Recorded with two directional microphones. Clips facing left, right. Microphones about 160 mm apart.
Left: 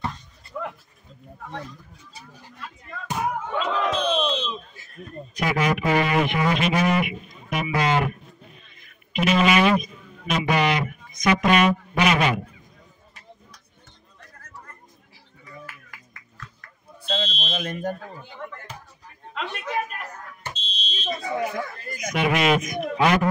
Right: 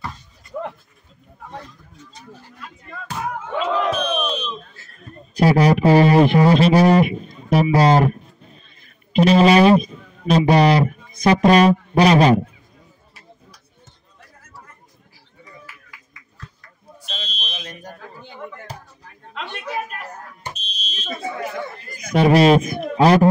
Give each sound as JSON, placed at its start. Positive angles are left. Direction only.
{"t": 3.9, "sound": "battle cry", "side_deg": 25}
{"t": 5.3, "sound": "a man's voice", "side_deg": -35}
{"t": 17.5, "sound": "speech", "side_deg": 55}
{"t": 19.3, "sound": "a man's voice", "side_deg": 0}
{"t": 20.5, "sound": "fire alarm", "side_deg": 30}
{"t": 21.9, "sound": "speech", "side_deg": -30}